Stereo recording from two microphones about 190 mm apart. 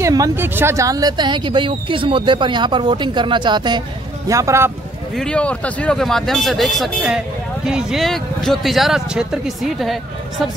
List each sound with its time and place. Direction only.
0.0 s speech: 15° right (ahead or behind)
5.1 s speech: 5° left (ahead or behind)